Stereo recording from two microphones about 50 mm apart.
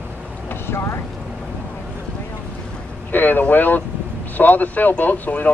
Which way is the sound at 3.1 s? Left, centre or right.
Left.